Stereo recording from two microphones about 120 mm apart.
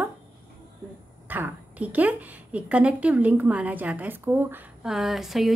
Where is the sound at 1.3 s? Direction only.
15° right (ahead or behind).